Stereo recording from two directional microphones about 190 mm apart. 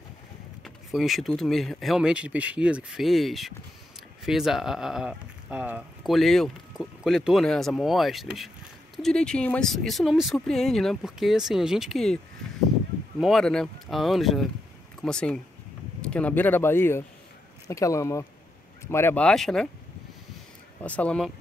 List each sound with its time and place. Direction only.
0.9 s speech: centre (ahead or behind)
13.2 s speech: centre (ahead or behind)
20.8 s speech: 5° left (ahead or behind)